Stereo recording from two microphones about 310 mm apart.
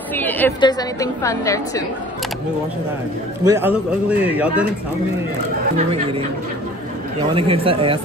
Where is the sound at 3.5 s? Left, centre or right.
Centre.